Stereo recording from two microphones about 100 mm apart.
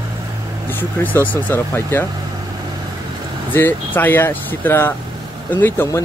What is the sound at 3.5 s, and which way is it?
Speech, 20° left (ahead or behind).